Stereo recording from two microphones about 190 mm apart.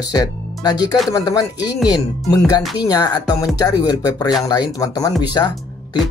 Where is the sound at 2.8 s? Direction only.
20° left (ahead or behind).